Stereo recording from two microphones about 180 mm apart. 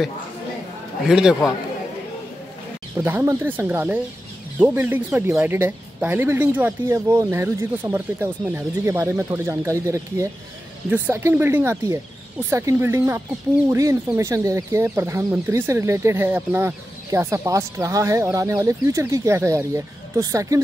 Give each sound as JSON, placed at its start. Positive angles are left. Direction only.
{"t": 1.0, "sound": "a man's voice", "side_deg": -5}
{"t": 3.0, "sound": "speech", "side_deg": -10}